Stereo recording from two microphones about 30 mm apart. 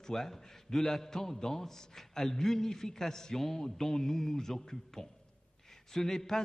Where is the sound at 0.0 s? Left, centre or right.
Centre.